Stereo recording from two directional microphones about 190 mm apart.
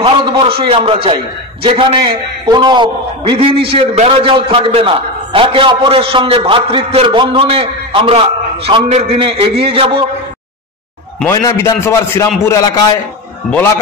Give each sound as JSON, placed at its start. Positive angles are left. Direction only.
{"t": 0.0, "sound": "a man's voice", "side_deg": -25}
{"t": 11.2, "sound": "a man's voice", "side_deg": 15}